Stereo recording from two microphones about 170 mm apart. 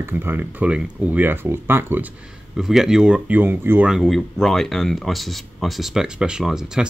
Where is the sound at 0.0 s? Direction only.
15° right (ahead or behind).